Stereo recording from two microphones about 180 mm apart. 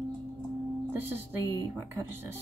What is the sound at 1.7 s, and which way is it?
Speech, 15° right (ahead or behind).